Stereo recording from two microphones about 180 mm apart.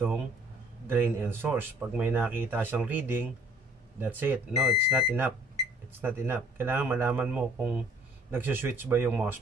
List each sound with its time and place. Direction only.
0.8 s speech: 10° right (ahead or behind)